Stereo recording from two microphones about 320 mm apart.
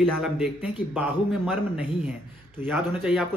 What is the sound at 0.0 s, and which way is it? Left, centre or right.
A man's voice, centre.